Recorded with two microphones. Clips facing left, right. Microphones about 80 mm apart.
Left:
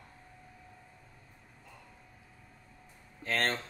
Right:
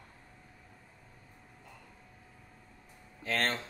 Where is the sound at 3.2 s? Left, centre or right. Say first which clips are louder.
Left 1 dB; left.